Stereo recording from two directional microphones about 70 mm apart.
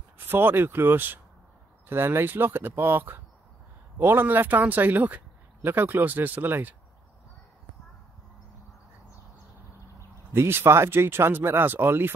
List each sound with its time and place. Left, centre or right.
0.2 s speech: right
10.3 s speech: right